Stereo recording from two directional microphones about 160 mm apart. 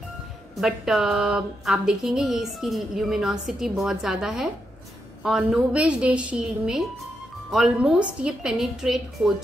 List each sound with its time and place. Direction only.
0.6 s a woman's voice: centre (ahead or behind)